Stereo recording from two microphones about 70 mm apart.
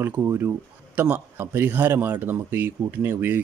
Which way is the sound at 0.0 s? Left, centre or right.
Right.